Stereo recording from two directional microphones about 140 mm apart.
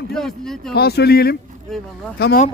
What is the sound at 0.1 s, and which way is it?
Speech, 5° left (ahead or behind).